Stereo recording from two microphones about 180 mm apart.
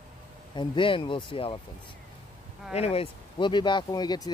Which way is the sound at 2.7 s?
35° left (ahead or behind).